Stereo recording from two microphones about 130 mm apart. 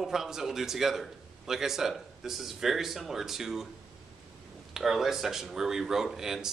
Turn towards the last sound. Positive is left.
turn(degrees=-5)  # may be behind; listen again after turning